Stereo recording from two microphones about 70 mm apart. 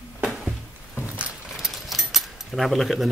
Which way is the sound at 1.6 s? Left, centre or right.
Centre.